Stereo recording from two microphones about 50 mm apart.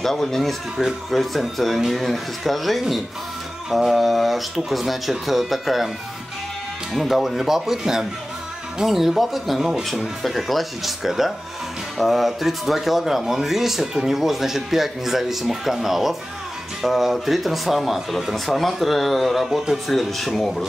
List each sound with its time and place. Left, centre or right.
0.0 s speech: centre
6.9 s speech: centre